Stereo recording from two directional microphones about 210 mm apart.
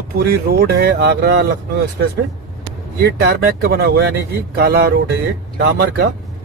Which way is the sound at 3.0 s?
50° right (ahead or behind).